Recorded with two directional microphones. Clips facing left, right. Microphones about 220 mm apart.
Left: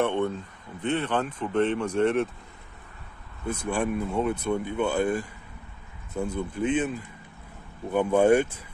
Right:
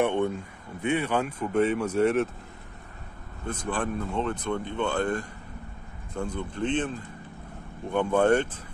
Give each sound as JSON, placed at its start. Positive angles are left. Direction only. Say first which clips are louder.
{"t": 0.0, "sound": "speech", "louder": "right 1 dB", "side_deg": -15}
{"t": 3.4, "sound": "speech", "louder": "left 3 dB", "side_deg": 10}